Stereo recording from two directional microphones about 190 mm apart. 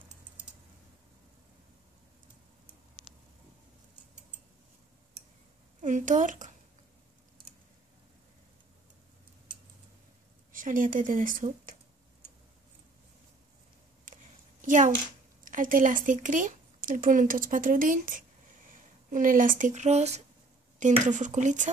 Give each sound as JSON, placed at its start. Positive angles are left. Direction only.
{"t": 5.8, "sound": "speech", "side_deg": -40}
{"t": 10.5, "sound": "speech", "side_deg": -45}
{"t": 14.0, "sound": "a sound", "side_deg": -45}
{"t": 15.4, "sound": "speech", "side_deg": -45}